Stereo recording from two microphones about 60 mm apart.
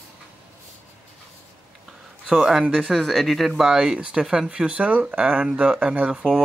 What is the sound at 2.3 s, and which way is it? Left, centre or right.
Speech, centre.